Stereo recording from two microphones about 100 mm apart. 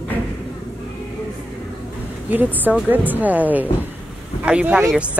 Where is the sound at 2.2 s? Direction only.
20° right (ahead or behind).